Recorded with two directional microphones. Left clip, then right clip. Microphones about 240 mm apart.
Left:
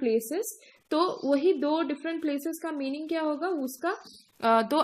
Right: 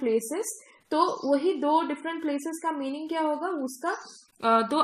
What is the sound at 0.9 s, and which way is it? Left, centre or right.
A woman's voice, left.